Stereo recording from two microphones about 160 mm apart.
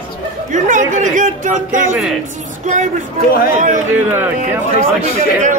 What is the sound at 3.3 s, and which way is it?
Speech, 70° left (ahead or behind).